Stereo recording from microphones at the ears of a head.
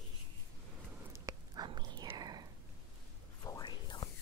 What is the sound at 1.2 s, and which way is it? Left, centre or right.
Dog, right.